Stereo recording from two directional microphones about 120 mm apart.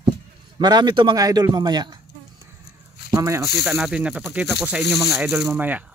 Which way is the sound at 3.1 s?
25° right (ahead or behind).